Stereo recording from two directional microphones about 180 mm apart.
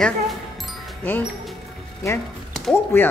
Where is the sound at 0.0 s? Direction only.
Centre (ahead or behind).